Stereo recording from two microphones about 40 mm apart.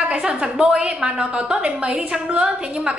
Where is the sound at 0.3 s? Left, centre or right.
Right.